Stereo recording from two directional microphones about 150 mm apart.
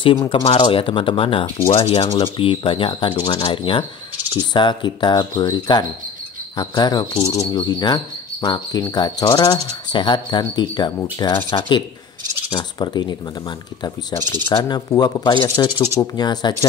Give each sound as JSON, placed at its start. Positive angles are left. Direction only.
{"t": 0.0, "sound": "speech", "side_deg": 35}
{"t": 4.4, "sound": "cricket", "side_deg": 30}
{"t": 12.4, "sound": "cricket", "side_deg": 30}
{"t": 14.5, "sound": "cricket", "side_deg": 30}